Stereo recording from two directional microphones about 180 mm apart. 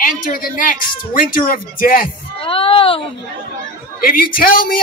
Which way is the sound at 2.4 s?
30° left (ahead or behind).